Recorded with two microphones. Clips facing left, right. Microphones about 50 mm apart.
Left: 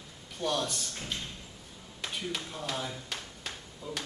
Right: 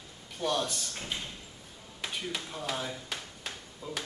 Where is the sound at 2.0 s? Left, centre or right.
Centre.